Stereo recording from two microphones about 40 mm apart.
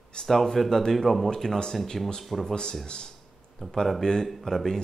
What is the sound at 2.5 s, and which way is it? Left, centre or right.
Speech, centre.